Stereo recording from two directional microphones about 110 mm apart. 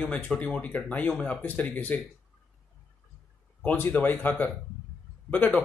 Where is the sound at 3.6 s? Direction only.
15° left (ahead or behind).